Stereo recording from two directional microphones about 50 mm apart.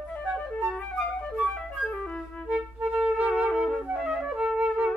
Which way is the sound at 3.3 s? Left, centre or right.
Centre.